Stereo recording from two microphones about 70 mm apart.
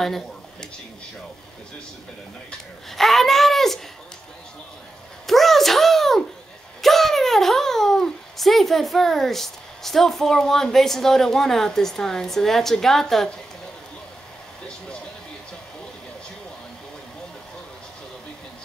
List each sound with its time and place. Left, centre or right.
0.0 s speech: centre
2.9 s a child's voice: centre
5.2 s a sound: centre
6.8 s speech: centre